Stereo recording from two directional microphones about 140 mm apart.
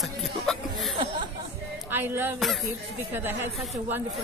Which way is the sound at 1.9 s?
15° right (ahead or behind).